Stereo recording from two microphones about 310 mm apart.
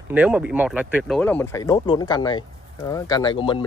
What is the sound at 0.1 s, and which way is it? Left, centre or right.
Speech, centre.